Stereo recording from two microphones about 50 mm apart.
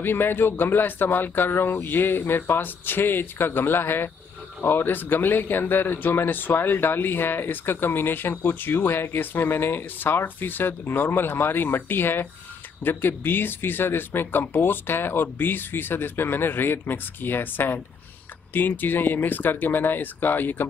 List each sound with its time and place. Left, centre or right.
0.0 s speech: left